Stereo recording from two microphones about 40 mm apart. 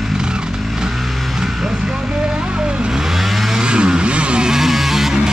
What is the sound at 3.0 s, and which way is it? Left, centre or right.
Vehicle, centre.